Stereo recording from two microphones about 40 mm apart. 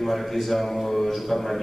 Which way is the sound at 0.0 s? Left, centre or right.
Centre.